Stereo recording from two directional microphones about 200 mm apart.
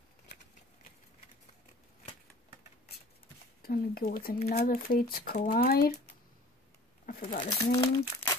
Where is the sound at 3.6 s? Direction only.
50° left (ahead or behind).